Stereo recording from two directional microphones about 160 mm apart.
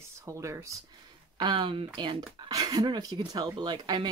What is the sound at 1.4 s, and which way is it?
Speech, 30° right (ahead or behind).